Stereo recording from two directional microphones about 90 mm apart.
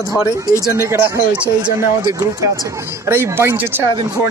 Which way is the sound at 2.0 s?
40° right (ahead or behind).